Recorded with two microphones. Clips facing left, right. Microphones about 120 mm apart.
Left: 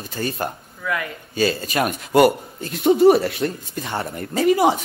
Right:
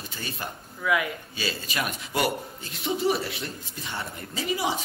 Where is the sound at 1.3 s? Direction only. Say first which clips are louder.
Left 12 dB; 55° left (ahead or behind).